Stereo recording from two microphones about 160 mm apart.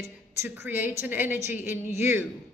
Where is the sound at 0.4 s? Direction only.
10° right (ahead or behind).